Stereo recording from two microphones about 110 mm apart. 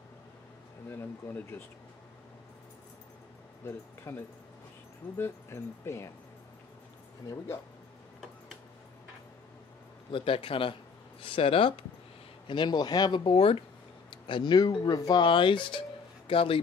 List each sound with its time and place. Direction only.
0.8 s speech: 20° left (ahead or behind)
3.6 s speech: 20° left (ahead or behind)
10.1 s speech: 55° left (ahead or behind)
12.4 s speech: 45° left (ahead or behind)